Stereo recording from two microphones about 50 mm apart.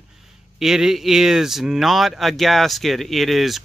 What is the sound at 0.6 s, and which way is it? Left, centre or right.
Speech, centre.